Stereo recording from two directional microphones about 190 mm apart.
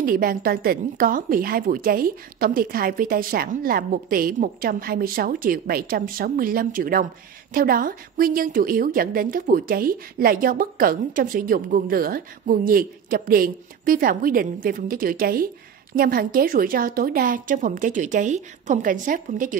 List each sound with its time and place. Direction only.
0.0 s a woman's voice: 50° right (ahead or behind)